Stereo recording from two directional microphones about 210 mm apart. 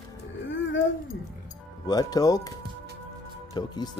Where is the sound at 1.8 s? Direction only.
15° left (ahead or behind).